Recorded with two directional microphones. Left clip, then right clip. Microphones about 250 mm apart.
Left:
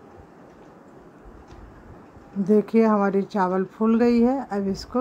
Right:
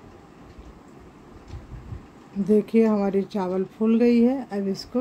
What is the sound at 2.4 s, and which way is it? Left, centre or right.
Speech, centre.